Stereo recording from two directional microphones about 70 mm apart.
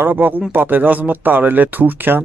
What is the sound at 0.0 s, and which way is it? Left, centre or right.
Speech, right.